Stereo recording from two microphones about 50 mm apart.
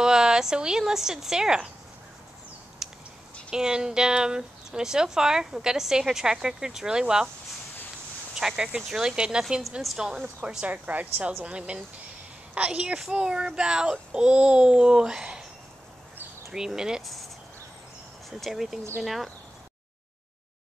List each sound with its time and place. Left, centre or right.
0.0 s speech: centre
2.8 s a sound: centre
3.4 s speech: centre
8.4 s speech: centre
9.6 s a woman's voice: centre
10.4 s a woman's voice: right
10.9 s a woman's voice: right; by 15.4 s centre
16.5 s speech: centre
18.4 s a woman's voice: centre